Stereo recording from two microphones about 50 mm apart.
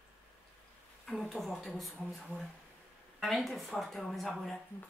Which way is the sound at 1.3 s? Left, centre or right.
Centre.